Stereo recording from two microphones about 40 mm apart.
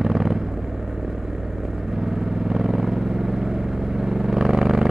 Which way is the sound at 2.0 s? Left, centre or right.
Centre.